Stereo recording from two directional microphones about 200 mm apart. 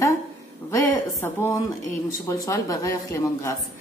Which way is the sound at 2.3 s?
15° left (ahead or behind).